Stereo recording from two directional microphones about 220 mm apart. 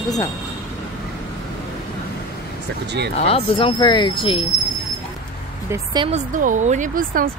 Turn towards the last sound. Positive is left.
turn(degrees=-40)  # may be behind; listen again after turning